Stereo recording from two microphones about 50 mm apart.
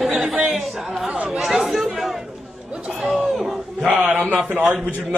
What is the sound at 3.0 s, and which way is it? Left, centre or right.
Speech, centre.